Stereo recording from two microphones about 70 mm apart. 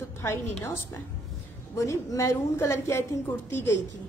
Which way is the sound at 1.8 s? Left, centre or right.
Left.